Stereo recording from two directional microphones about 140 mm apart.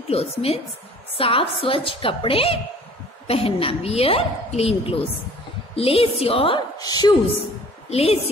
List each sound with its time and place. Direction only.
0.1 s a woman's voice: 45° left (ahead or behind)
6.8 s a woman's voice: 30° left (ahead or behind)
7.9 s a woman's voice: 45° left (ahead or behind)